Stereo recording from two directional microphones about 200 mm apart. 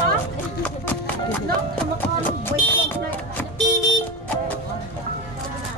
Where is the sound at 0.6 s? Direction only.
10° left (ahead or behind).